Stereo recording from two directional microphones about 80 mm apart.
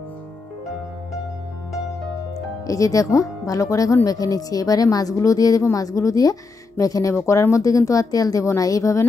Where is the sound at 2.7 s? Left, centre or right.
Left.